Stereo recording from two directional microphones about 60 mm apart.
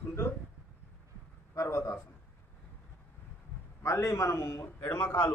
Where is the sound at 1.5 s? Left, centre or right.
Left.